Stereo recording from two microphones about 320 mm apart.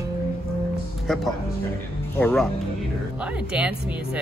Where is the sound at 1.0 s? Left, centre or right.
Centre.